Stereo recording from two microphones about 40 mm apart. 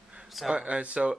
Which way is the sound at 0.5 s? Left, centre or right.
Right.